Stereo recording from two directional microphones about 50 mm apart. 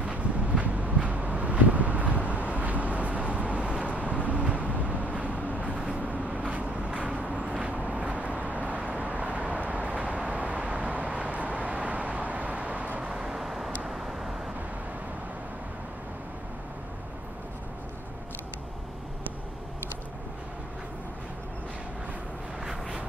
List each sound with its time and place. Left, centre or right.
0.0 s vehicle: right
13.1 s vehicle: centre